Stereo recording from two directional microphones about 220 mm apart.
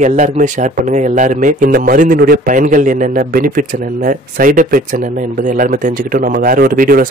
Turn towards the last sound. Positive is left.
turn(degrees=-40)  # may be behind; listen again after turning